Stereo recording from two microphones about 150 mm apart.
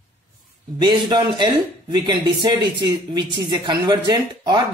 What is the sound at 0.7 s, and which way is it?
Speech, 30° right (ahead or behind).